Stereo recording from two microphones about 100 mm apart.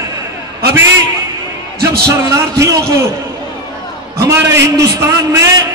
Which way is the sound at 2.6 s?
30° right (ahead or behind).